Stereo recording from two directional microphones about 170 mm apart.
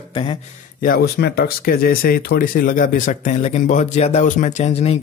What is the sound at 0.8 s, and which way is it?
A man's voice, 60° left (ahead or behind).